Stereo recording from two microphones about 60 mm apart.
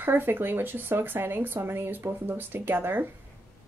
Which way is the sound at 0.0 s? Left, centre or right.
Right.